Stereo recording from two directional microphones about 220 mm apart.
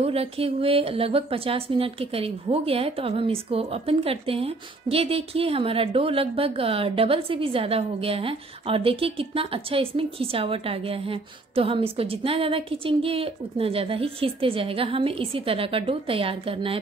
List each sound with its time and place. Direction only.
0.0 s speech: 25° right (ahead or behind)